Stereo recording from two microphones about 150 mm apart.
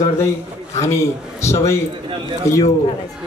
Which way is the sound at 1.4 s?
20° left (ahead or behind).